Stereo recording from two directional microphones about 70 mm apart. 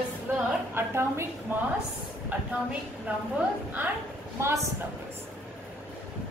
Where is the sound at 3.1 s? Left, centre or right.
Right.